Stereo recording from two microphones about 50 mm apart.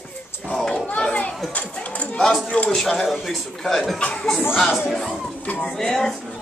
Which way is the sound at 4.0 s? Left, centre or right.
Centre.